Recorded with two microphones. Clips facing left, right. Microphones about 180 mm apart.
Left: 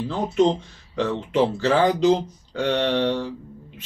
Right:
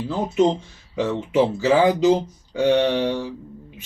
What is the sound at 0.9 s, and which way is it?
Speech, 10° right (ahead or behind).